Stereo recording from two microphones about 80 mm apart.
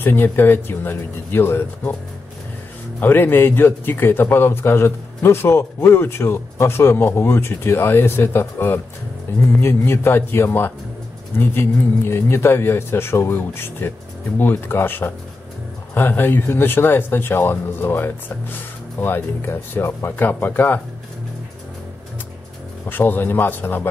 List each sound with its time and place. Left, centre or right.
0.0 s a man's voice: left
3.0 s a man's voice: left
22.8 s a man's voice: left